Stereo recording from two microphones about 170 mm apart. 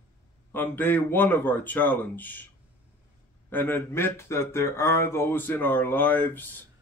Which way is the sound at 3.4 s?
10° left (ahead or behind).